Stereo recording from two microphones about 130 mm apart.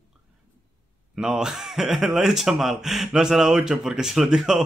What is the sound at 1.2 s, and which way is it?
Speech, 5° right (ahead or behind).